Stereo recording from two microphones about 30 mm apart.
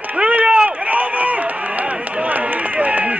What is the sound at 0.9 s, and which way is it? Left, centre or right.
Run, right.